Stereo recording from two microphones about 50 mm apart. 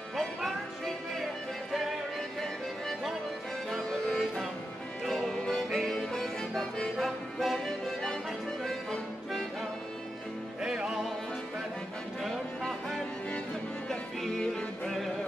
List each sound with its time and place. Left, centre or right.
0.1 s music: centre
3.9 s music: centre
5.7 s music: centre
10.6 s music: centre
12.2 s music: centre